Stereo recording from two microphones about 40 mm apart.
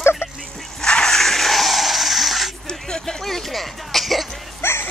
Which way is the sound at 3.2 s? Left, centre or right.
Centre.